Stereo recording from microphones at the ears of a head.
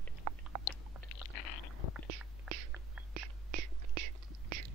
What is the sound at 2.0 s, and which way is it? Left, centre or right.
Whispering, right.